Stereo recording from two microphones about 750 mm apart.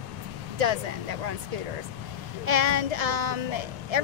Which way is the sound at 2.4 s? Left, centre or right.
Right.